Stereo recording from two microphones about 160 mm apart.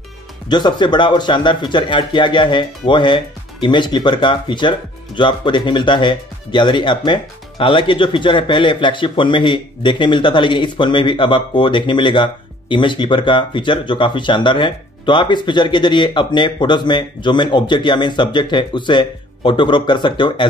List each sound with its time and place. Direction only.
0.5 s speech: 25° left (ahead or behind)